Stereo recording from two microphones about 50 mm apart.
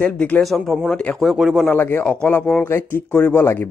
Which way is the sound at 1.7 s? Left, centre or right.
Left.